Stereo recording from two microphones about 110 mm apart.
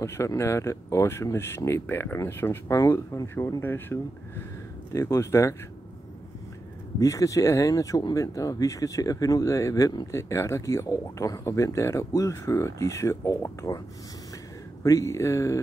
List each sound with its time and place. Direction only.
0.0 s speech: 25° left (ahead or behind)
7.0 s speech: 30° left (ahead or behind)
14.8 s speech: 30° left (ahead or behind)